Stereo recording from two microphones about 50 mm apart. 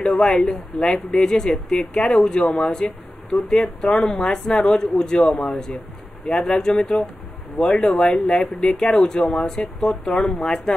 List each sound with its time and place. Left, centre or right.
0.1 s speech: centre
0.5 s speech: centre
6.5 s speech: centre